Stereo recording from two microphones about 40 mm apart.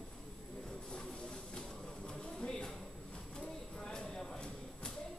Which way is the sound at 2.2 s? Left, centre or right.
Centre.